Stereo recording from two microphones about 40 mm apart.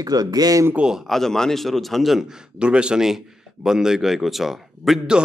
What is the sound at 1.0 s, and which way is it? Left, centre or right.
Speech, centre.